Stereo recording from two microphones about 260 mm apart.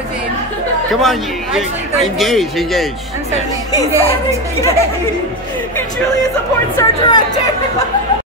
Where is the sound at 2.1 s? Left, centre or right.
Centre.